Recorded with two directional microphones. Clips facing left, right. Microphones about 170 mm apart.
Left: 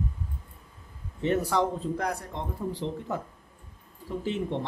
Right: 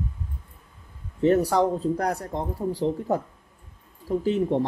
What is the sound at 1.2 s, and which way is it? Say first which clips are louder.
Speech: right 6 dB; 40° right (ahead or behind).